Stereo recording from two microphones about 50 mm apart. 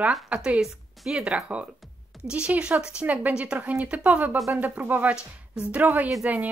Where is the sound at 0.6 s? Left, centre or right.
Centre.